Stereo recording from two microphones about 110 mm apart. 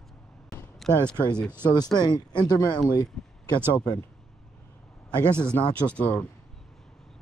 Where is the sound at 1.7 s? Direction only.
40° left (ahead or behind).